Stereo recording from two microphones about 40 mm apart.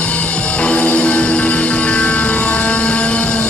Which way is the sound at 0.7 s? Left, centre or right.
Left.